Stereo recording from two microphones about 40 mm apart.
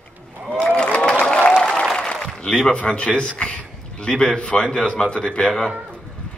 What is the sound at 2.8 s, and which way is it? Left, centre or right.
A man's voice, left.